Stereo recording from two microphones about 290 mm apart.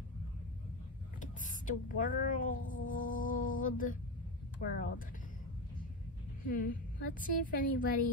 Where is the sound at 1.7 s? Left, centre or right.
Left.